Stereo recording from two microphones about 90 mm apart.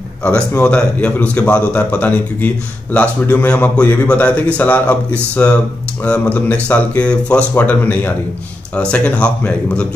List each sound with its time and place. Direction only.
0.6 s speech: 10° left (ahead or behind)